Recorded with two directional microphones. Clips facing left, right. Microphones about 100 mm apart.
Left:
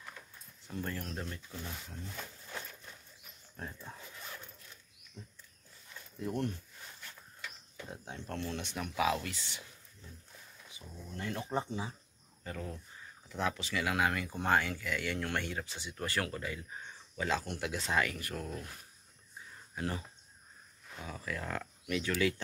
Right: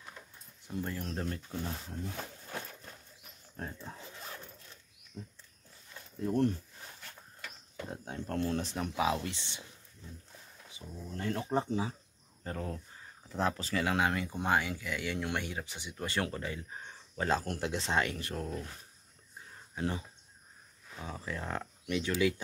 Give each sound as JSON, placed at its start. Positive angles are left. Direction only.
{"t": 0.7, "sound": "speech", "side_deg": -10}
{"t": 1.6, "sound": "speech", "side_deg": -35}
{"t": 2.1, "sound": "a sound", "side_deg": -40}
{"t": 3.5, "sound": "speech", "side_deg": -30}
{"t": 5.2, "sound": "speech", "side_deg": -40}
{"t": 7.0, "sound": "mechanisms", "side_deg": -50}
{"t": 7.8, "sound": "speech", "side_deg": -40}
{"t": 11.1, "sound": "speech", "side_deg": -35}
{"t": 12.4, "sound": "speech", "side_deg": -40}
{"t": 19.7, "sound": "speech", "side_deg": -20}